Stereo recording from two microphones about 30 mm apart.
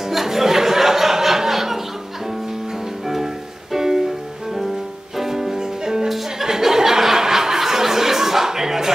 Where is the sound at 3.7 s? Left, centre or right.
Centre.